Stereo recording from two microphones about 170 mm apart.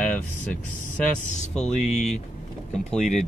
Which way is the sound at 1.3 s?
40° left (ahead or behind).